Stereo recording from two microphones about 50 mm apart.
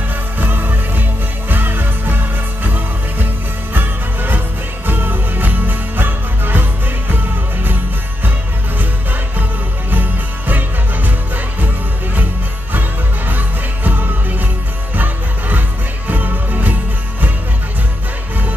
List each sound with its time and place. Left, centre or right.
0.4 s music: right
4.8 s jingle bell: right
9.8 s jingle bell: right
13.3 s music: right